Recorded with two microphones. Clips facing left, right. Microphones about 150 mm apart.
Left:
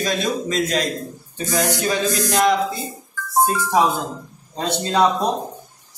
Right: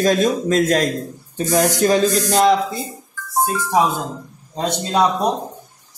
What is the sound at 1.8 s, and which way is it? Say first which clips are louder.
Music: right 5 dB; 30° right (ahead or behind).